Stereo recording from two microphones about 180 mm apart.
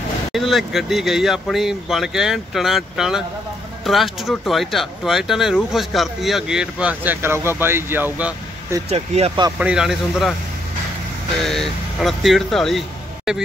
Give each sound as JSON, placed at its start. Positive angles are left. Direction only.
{"t": 0.3, "sound": "speech", "side_deg": 0}
{"t": 8.8, "sound": "speech", "side_deg": -35}
{"t": 9.6, "sound": "speech", "side_deg": -5}
{"t": 11.4, "sound": "speech", "side_deg": 0}